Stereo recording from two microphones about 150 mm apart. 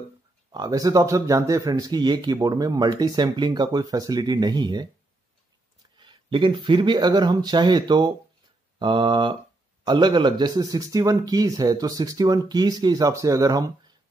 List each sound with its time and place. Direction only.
0.5 s speech: 25° right (ahead or behind)